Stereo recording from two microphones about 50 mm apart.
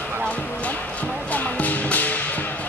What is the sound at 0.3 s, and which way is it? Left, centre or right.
Music, left.